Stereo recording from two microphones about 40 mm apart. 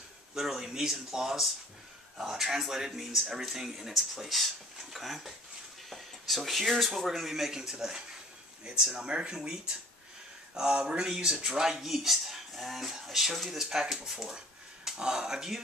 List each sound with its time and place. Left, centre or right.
0.3 s speech: centre
8.9 s speech: right